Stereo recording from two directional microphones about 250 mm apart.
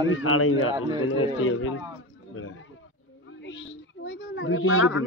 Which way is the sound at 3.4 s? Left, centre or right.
Left.